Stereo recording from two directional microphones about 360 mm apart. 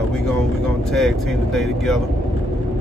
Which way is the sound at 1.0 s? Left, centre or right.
Centre.